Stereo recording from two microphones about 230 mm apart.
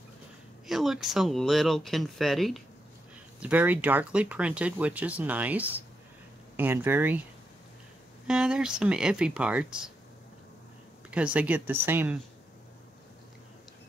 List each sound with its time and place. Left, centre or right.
0.7 s speech: centre
8.3 s speech: centre
11.1 s speech: centre